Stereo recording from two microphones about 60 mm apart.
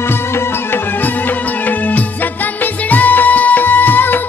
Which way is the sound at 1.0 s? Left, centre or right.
Left.